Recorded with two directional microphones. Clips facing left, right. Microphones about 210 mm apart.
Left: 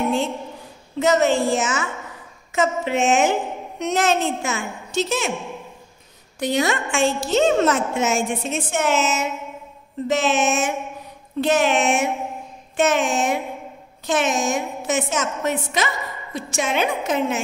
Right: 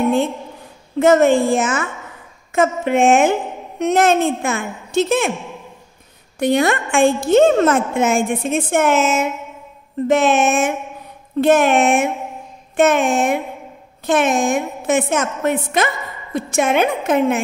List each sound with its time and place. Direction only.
0.9 s a woman's voice: 55° right (ahead or behind)
6.4 s a woman's voice: 55° right (ahead or behind)